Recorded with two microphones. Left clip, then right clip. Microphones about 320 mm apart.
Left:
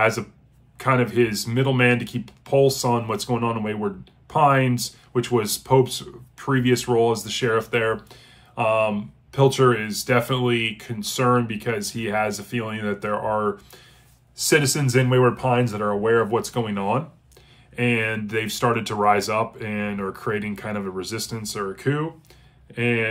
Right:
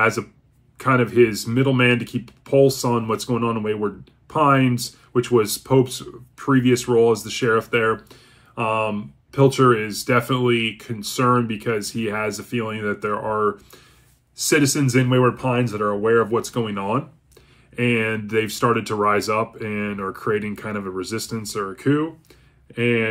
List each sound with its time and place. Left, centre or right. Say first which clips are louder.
0.7 s speech: right 3 dB; centre